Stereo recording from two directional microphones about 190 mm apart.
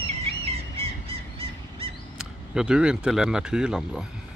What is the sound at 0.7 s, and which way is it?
Bird, 30° right (ahead or behind).